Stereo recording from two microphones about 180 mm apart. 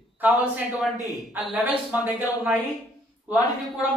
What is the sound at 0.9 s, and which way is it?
Speech, 20° left (ahead or behind).